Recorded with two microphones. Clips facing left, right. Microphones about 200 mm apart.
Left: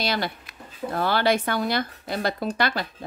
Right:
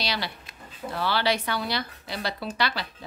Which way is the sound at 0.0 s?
50° left (ahead or behind).